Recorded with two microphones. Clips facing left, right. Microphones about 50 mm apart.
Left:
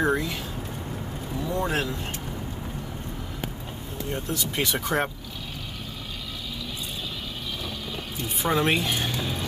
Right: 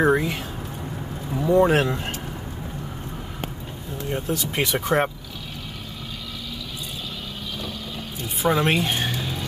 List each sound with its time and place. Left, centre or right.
0.0 s speech: right
4.3 s speech: right
8.4 s a woman's voice: centre
8.8 s a woman's voice: right
9.2 s music: centre